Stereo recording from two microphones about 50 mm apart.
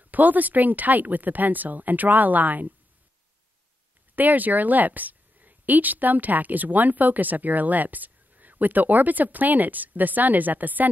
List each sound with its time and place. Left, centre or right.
0.0 s a woman's voice: right
4.1 s a woman's voice: right